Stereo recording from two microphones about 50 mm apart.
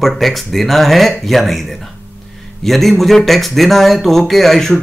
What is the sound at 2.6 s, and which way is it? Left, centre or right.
Speech, centre.